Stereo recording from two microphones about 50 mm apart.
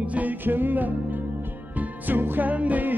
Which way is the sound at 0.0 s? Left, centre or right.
Right.